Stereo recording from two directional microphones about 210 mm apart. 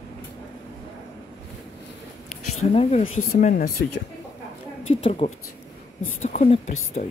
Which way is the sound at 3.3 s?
40° left (ahead or behind).